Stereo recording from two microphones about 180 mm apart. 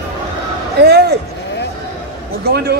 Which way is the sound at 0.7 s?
65° right (ahead or behind).